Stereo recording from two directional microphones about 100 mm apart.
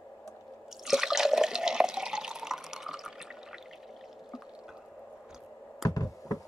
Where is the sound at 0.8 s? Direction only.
5° right (ahead or behind).